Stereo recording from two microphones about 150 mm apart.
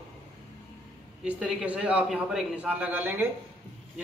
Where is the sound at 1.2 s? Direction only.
5° right (ahead or behind).